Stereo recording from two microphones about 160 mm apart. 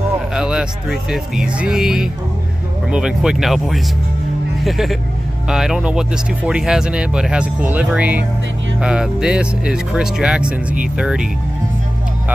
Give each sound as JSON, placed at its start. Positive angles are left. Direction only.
{"t": 0.3, "sound": "speech", "side_deg": -5}